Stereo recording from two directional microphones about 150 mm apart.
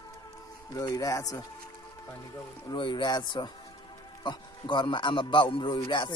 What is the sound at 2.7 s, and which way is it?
Speech, 30° left (ahead or behind).